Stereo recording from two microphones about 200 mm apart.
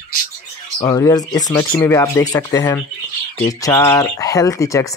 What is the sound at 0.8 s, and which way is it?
Speech, 15° left (ahead or behind).